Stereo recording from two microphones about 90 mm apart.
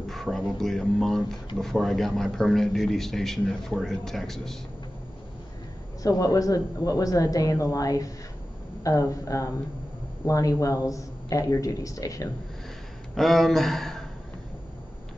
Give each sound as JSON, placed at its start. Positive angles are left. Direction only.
{"t": 0.1, "sound": "speech", "side_deg": 5}
{"t": 6.0, "sound": "speech", "side_deg": 40}
{"t": 13.1, "sound": "speech", "side_deg": 0}